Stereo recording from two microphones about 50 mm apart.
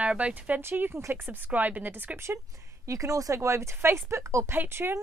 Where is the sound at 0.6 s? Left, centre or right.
Right.